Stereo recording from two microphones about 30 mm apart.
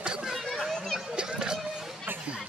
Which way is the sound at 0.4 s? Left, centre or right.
Centre.